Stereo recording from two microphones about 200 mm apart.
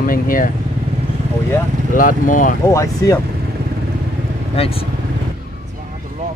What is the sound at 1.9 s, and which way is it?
Speech, 40° left (ahead or behind).